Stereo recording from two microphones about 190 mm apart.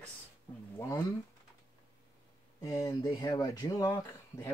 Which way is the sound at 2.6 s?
20° left (ahead or behind).